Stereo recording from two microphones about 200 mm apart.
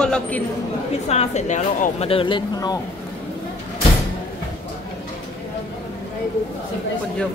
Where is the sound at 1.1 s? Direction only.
35° left (ahead or behind).